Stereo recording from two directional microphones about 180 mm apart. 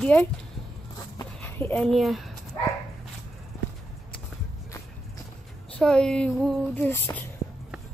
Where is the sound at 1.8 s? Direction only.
Centre (ahead or behind).